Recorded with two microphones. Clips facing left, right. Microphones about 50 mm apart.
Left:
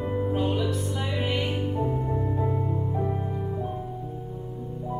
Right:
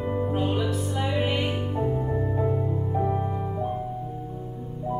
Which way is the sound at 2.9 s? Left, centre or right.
Centre.